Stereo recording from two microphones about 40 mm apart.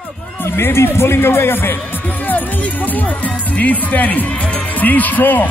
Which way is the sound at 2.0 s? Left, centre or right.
Left.